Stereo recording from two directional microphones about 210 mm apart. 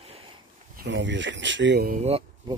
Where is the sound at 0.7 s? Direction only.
55° right (ahead or behind).